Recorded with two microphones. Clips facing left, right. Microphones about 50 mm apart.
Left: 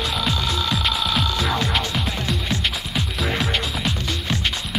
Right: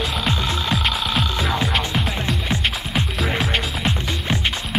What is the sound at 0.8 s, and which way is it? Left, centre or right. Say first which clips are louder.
Music: even; centre.